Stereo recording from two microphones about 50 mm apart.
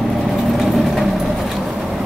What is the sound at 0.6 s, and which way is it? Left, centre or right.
Vehicle, centre.